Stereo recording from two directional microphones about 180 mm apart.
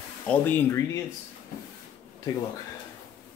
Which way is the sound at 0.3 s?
10° left (ahead or behind).